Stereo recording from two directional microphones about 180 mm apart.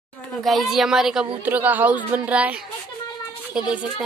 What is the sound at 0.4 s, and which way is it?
A woman's voice, centre (ahead or behind).